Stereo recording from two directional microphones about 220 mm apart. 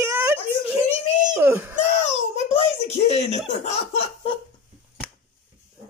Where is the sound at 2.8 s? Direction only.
30° left (ahead or behind).